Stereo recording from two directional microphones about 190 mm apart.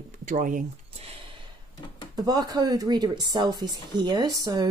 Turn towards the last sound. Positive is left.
turn(degrees=-20)  # may be behind; listen again after turning